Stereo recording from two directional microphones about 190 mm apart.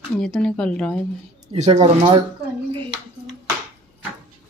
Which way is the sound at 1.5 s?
35° right (ahead or behind).